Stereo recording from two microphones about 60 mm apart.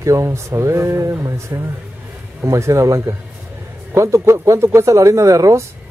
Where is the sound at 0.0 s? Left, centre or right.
Right.